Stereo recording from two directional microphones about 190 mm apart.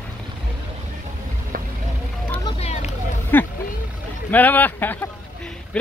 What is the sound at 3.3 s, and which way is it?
Speech, 10° left (ahead or behind).